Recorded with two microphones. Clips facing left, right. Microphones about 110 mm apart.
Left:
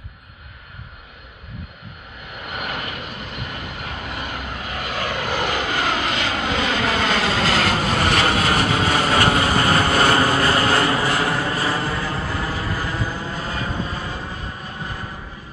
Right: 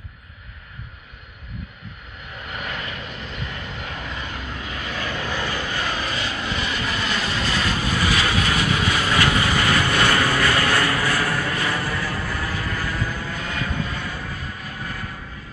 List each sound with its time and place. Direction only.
2.5 s vehicle: 65° left (ahead or behind); by 15.1 s 25° left (ahead or behind)